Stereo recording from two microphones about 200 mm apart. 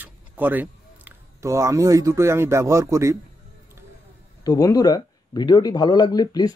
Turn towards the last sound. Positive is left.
turn(degrees=20)  # may be behind; listen again after turning